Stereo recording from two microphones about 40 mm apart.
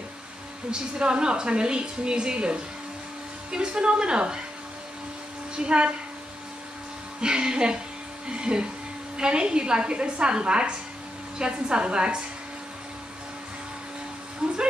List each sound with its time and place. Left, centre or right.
0.7 s a woman's voice: right
5.6 s a woman's voice: right
7.2 s a woman's voice: right
14.4 s speech: centre